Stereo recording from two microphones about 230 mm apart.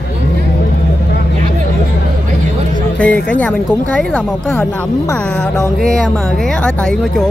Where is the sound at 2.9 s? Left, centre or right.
Centre.